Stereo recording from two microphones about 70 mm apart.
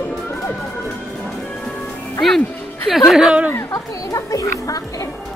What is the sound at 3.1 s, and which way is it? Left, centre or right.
Speech, centre.